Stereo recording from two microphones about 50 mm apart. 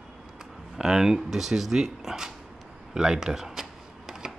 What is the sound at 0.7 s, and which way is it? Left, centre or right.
Speech, centre.